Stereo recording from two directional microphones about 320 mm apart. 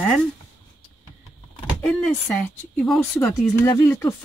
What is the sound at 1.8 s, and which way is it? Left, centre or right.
Speech, centre.